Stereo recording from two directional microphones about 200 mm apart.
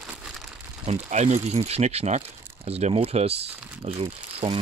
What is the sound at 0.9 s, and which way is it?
Speech, 35° right (ahead or behind).